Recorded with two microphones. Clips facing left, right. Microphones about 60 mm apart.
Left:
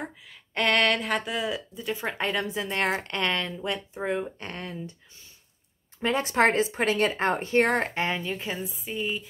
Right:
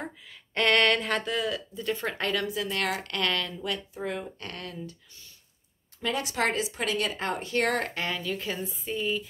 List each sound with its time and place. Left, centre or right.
0.0 s speech: centre; by 4.9 s left
5.9 s a woman's voice: left
8.5 s speech: centre